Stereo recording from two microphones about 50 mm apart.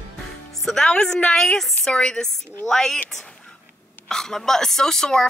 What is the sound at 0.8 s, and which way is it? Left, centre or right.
Speech, centre.